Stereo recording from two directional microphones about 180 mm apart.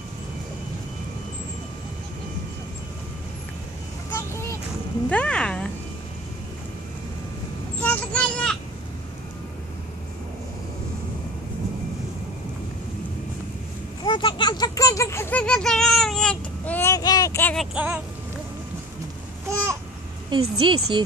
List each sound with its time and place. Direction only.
4.1 s vehicle: 15° left (ahead or behind)
5.1 s a sound: 5° left (ahead or behind)
7.8 s vehicle: 5° left (ahead or behind)
14.0 s a sound: 25° left (ahead or behind)
17.6 s speech: 5° right (ahead or behind)
20.2 s a woman's voice: 25° right (ahead or behind)